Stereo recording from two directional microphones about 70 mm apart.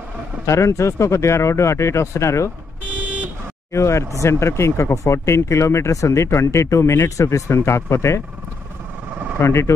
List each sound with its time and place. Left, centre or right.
0.5 s speech: left
3.7 s speech: left
9.4 s speech: left